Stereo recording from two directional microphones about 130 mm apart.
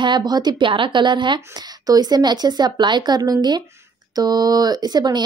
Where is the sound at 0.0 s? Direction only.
35° right (ahead or behind).